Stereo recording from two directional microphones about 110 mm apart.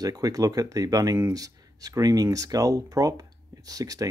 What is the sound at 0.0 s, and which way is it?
Speech, 35° right (ahead or behind).